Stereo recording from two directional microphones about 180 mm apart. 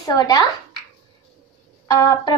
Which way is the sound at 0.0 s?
20° left (ahead or behind).